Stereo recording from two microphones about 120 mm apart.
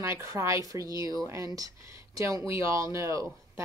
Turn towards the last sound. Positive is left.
turn(degrees=-25)  # may be behind; listen again after turning